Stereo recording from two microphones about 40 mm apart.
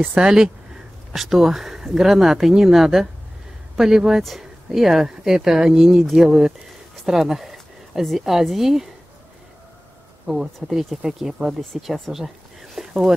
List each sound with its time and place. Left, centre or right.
0.1 s speech: centre
1.1 s speech: centre
7.9 s speech: centre
8.2 s speech: centre
10.2 s speech: centre